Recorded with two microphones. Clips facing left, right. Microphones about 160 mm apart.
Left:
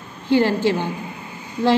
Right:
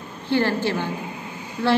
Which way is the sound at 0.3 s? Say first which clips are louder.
Left 4 dB; 15° left (ahead or behind).